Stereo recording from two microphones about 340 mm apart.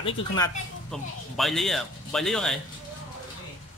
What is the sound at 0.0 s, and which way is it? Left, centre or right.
Speech, centre.